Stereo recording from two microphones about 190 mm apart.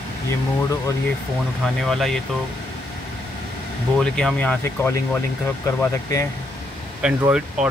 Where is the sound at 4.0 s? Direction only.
5° left (ahead or behind).